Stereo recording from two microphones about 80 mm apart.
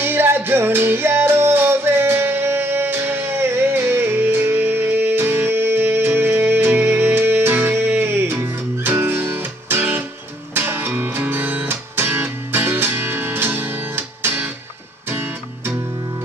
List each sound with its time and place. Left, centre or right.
0.0 s music: right